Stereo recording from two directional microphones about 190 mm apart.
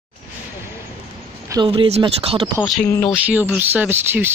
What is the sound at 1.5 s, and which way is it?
Speech, 25° right (ahead or behind).